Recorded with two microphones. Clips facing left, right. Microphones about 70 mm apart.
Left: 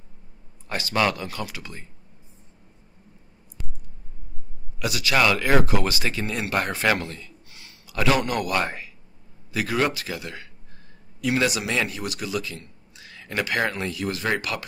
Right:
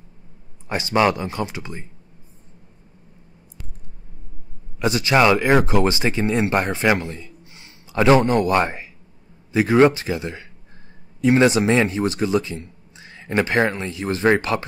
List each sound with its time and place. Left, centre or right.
0.7 s speech: right
4.7 s speech: right